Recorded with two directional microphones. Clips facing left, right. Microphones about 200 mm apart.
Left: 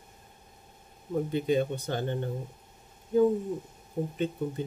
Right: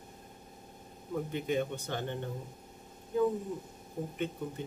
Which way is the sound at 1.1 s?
35° left (ahead or behind).